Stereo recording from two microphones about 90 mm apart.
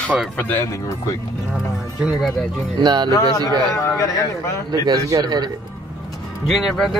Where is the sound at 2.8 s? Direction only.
50° right (ahead or behind).